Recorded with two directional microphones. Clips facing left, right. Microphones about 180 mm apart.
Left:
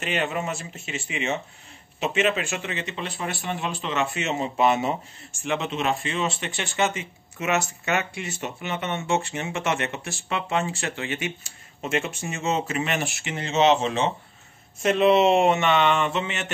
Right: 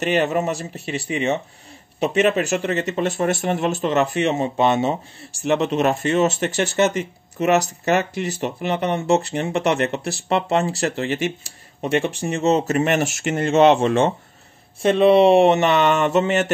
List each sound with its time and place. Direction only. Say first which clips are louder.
0.0 s speech: right 7 dB; 40° right (ahead or behind)
14.8 s speech: right 5 dB; 30° right (ahead or behind)